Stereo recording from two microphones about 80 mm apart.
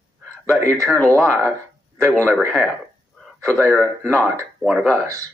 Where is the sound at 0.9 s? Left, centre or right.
Centre.